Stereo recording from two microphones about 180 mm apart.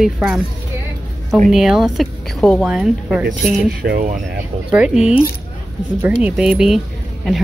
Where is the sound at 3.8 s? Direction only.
50° right (ahead or behind).